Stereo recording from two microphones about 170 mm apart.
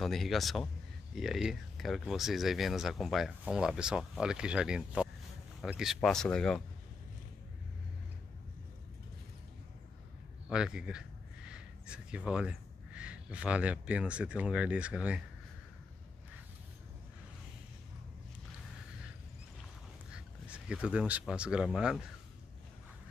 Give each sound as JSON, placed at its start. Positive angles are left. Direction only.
{"t": 0.0, "sound": "speech", "side_deg": 0}
{"t": 10.5, "sound": "speech", "side_deg": -5}
{"t": 20.1, "sound": "speech", "side_deg": -5}